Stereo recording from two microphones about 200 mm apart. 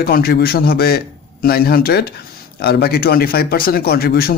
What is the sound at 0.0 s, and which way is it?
A man's voice, 50° left (ahead or behind).